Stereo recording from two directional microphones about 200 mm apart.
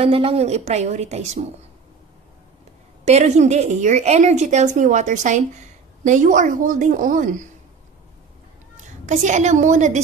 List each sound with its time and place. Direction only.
0.0 s a woman's voice: 30° right (ahead or behind)
3.1 s a woman's voice: 35° right (ahead or behind)
9.0 s a woman's voice: 35° right (ahead or behind)